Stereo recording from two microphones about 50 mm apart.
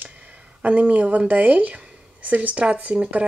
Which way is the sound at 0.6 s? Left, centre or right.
Right.